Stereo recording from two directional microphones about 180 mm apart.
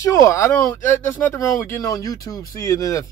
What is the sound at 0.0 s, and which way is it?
Speech, 15° left (ahead or behind).